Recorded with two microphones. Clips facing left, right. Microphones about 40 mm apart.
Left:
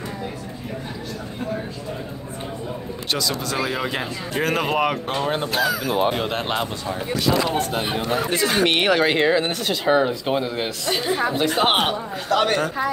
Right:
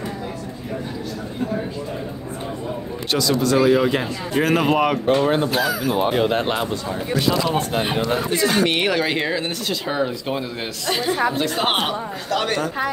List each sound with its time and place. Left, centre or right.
3.1 s speech: centre
7.5 s speech: right
8.7 s speech: left
9.4 s speech: left
10.9 s speech: centre